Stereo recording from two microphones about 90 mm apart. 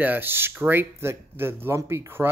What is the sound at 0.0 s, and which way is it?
Speech, 20° right (ahead or behind).